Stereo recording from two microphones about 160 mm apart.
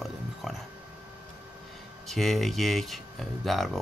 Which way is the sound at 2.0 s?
Centre (ahead or behind).